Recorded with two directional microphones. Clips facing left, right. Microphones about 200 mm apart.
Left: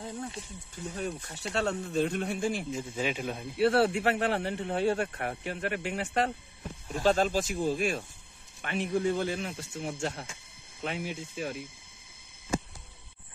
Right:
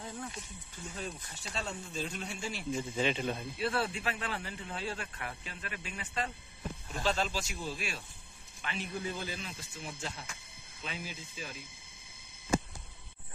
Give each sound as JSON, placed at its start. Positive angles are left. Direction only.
{"t": 0.0, "sound": "speech", "side_deg": 30}
{"t": 0.9, "sound": "speech", "side_deg": 65}
{"t": 2.7, "sound": "a man's voice", "side_deg": 5}
{"t": 3.5, "sound": "speech", "side_deg": 70}
{"t": 7.0, "sound": "speech", "side_deg": 50}
{"t": 8.8, "sound": "speech", "side_deg": 80}